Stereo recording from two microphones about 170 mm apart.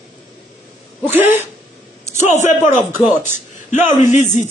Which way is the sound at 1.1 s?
10° right (ahead or behind).